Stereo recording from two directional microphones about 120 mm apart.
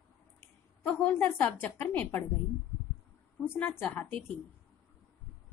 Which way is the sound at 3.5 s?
15° left (ahead or behind).